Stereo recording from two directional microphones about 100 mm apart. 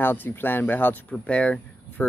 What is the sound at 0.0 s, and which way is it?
Speech, 20° left (ahead or behind).